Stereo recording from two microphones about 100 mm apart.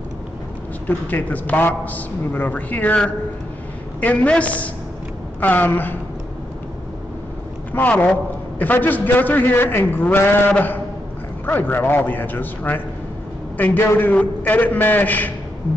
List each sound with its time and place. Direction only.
0.8 s a man's voice: 15° left (ahead or behind)
7.7 s a man's voice: 15° left (ahead or behind)